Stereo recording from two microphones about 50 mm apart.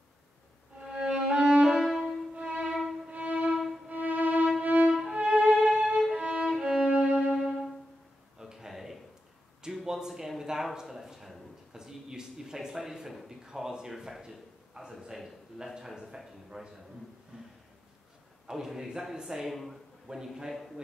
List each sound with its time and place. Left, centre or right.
0.7 s violin: centre
1.8 s music: centre
2.3 s violin: right
4.9 s violin: centre
5.6 s violin: centre
6.1 s violin: right
6.4 s violin: centre
7.0 s music: right
8.4 s a sound: centre
13.5 s a man's voice: centre
17.3 s a sound: centre
18.5 s a man's voice: centre
20.1 s a man's voice: centre